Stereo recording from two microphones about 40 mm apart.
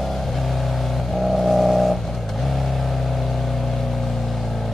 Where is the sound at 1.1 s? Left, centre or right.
Centre.